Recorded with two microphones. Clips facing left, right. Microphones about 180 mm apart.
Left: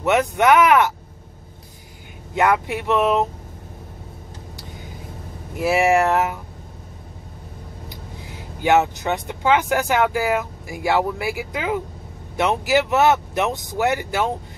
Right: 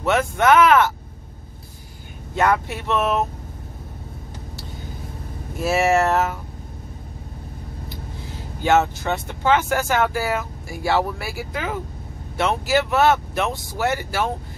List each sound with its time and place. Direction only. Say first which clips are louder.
0.0 s speech: left 1 dB; 20° left (ahead or behind)
2.3 s speech: left 1 dB; 15° left (ahead or behind)
5.6 s speech: left 1 dB; 15° left (ahead or behind)
7.9 s speech: right 2 dB; 15° left (ahead or behind)